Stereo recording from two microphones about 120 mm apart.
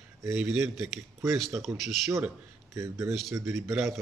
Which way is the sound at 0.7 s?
Centre (ahead or behind).